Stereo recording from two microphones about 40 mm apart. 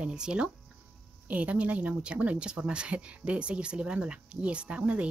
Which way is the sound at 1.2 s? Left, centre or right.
Right.